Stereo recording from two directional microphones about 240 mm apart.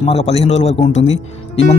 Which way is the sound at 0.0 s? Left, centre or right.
Left.